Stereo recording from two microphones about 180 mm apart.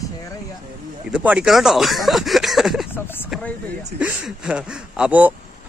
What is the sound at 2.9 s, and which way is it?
Speech, 10° left (ahead or behind).